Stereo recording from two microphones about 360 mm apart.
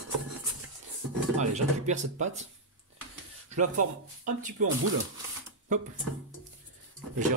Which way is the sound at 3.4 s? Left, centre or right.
Right.